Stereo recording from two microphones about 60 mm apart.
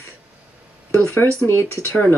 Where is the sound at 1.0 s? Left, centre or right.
Left.